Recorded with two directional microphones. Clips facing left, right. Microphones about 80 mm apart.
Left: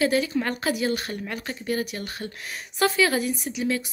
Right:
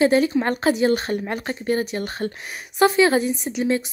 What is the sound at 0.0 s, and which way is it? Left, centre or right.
A woman's voice, right.